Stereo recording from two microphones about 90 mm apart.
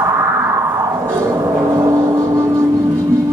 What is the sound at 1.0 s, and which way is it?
Gong, 30° right (ahead or behind).